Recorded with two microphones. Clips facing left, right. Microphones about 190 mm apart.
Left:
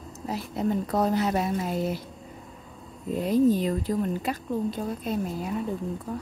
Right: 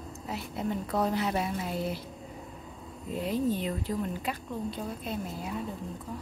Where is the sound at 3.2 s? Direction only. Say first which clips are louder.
Left 8 dB; 40° left (ahead or behind).